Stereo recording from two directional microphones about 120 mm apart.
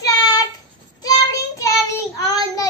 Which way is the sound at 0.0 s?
35° left (ahead or behind).